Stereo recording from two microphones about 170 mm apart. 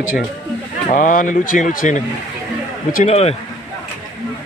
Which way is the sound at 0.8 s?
50° left (ahead or behind).